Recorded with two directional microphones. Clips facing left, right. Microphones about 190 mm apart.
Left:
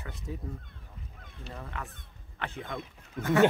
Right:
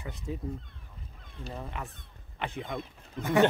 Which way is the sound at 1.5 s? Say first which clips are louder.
Right 2 dB; 15° right (ahead or behind).